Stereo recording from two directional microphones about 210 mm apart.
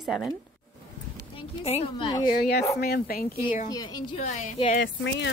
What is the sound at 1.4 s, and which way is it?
Speech, 25° left (ahead or behind).